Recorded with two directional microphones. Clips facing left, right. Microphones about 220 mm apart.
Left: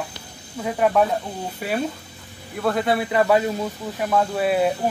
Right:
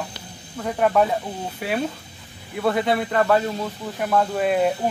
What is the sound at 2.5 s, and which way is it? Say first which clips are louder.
Speech: even; centre (ahead or behind).